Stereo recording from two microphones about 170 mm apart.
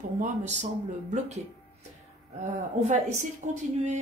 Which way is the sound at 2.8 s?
40° right (ahead or behind).